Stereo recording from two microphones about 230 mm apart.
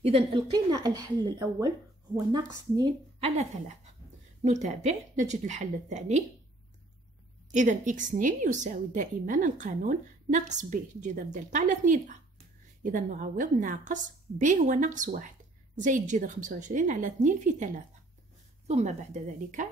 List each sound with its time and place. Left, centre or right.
0.0 s a woman's voice: right
3.2 s a woman's voice: right
7.5 s a woman's voice: right
18.7 s a woman's voice: right